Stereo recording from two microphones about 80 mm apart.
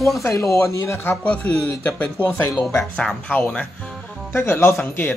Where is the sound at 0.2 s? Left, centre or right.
Left.